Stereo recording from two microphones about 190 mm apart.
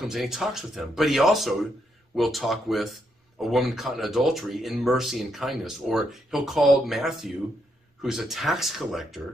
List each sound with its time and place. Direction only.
0.0 s speech: centre (ahead or behind)